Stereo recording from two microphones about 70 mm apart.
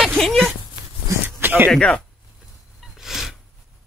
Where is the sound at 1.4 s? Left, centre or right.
Right.